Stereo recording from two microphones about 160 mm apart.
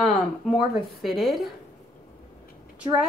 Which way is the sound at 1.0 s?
Centre (ahead or behind).